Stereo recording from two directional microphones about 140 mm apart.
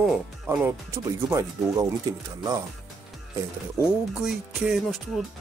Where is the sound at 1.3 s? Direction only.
25° right (ahead or behind).